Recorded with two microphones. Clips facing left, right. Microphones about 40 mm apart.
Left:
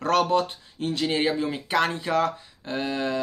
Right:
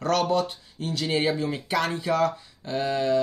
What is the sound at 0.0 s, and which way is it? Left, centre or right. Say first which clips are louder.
Speech: left 2 dB; left.